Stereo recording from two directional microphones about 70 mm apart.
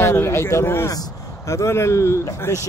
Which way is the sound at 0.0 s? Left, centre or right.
Left.